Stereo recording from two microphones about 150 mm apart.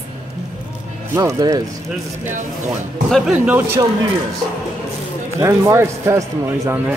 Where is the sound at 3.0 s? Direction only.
Centre (ahead or behind).